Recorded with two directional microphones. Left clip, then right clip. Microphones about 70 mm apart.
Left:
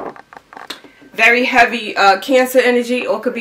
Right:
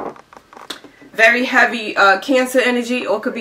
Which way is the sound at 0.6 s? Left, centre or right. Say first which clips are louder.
Left 1 dB; left.